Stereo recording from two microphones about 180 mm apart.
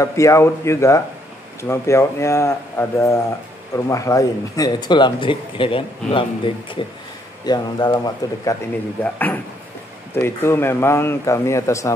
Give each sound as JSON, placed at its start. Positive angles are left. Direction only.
{"t": 0.0, "sound": "a man's voice", "side_deg": 15}
{"t": 9.0, "sound": "speech", "side_deg": 10}